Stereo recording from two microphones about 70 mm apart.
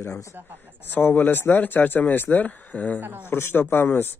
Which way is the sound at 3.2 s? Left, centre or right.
Left.